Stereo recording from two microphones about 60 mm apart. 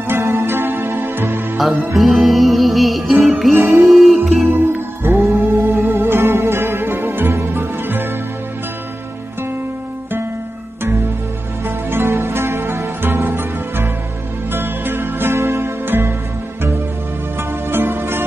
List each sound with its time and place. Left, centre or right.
0.1 s music: right
2.0 s music: centre
3.5 s music: right
3.9 s music: centre
4.5 s music: right
11.6 s music: right
17.4 s music: right